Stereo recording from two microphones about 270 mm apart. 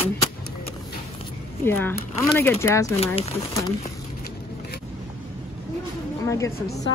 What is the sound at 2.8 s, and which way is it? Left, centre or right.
Speech, left.